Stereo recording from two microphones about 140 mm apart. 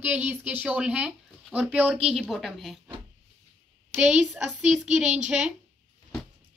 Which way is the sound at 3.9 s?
5° right (ahead or behind).